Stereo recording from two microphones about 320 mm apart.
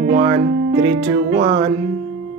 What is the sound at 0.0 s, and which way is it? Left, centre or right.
Speech, right.